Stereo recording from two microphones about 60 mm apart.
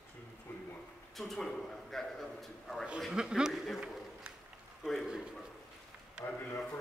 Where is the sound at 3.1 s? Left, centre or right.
Centre.